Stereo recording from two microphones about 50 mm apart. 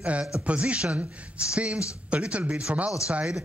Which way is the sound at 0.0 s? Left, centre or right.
Right.